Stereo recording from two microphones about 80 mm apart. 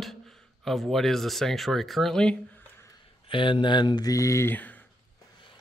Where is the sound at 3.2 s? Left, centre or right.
Left.